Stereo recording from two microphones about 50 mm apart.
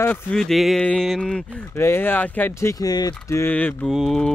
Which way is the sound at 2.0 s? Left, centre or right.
Left.